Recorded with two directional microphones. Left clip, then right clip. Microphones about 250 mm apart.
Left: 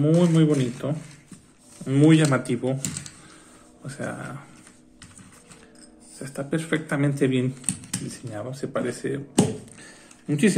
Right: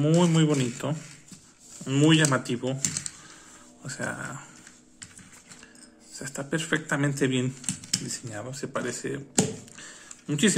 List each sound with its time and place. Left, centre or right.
0.0 s speech: centre
6.1 s speech: centre
9.3 s a sound: centre